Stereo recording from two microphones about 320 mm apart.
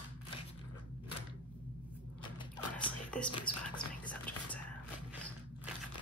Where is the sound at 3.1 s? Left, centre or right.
Centre.